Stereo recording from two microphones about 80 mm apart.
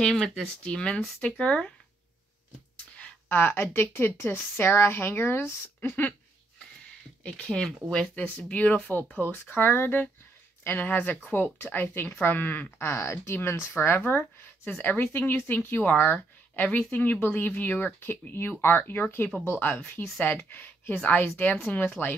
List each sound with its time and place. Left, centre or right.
0.0 s speech: centre
3.3 s speech: left
7.2 s speech: centre